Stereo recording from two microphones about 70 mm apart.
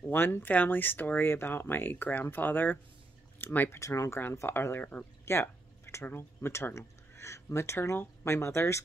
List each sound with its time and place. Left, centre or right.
0.1 s speech: left
3.8 s speech: left
4.2 s speech: left
5.2 s a sound: left
6.0 s speech: left